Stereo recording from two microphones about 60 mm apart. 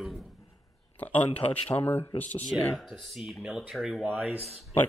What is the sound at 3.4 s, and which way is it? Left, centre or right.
Speech, centre.